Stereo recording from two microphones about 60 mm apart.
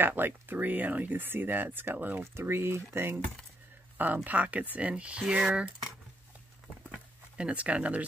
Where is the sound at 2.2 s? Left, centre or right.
Right.